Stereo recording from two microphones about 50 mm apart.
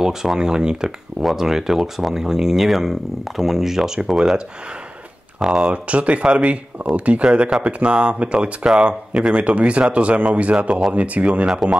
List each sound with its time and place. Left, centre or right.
0.0 s speech: centre
5.4 s speech: centre
11.4 s speech: centre